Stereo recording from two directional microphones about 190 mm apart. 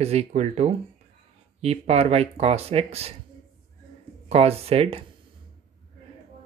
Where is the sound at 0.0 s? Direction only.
35° right (ahead or behind).